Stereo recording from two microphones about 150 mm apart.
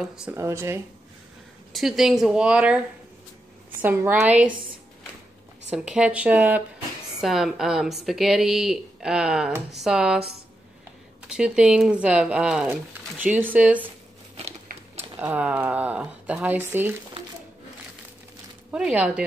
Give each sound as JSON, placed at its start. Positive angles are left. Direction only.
{"t": 0.0, "sound": "speech", "side_deg": -5}
{"t": 0.3, "sound": "speech", "side_deg": -20}
{"t": 1.7, "sound": "speech", "side_deg": 0}
{"t": 3.8, "sound": "speech", "side_deg": -15}
{"t": 5.7, "sound": "speech", "side_deg": -5}
{"t": 14.7, "sound": "a sound", "side_deg": -75}
{"t": 15.1, "sound": "speech", "side_deg": -10}
{"t": 18.7, "sound": "speech", "side_deg": -5}